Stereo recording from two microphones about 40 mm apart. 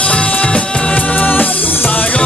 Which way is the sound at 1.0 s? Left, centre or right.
Left.